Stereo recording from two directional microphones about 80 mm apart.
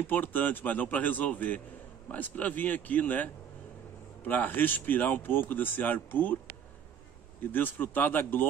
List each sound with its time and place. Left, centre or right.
0.0 s speech: left
7.5 s speech: left